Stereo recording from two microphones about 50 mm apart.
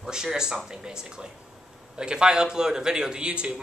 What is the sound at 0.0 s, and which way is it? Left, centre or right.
A man's voice, centre.